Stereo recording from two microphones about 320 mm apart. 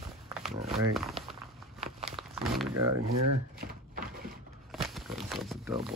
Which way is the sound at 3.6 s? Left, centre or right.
Right.